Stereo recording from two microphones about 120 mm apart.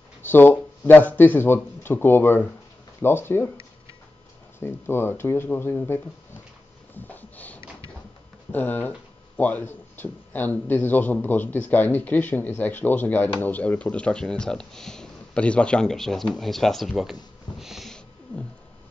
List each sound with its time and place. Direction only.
0.2 s speech: 15° left (ahead or behind)
4.6 s speech: 20° left (ahead or behind)
7.1 s a sound: 15° left (ahead or behind)
8.5 s speech: 15° left (ahead or behind)